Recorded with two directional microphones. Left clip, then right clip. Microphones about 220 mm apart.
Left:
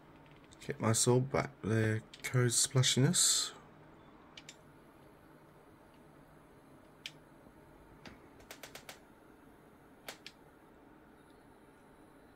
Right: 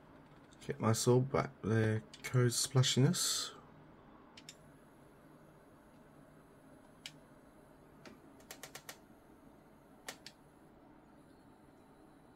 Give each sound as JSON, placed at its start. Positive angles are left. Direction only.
{"t": 0.6, "sound": "speech", "side_deg": 5}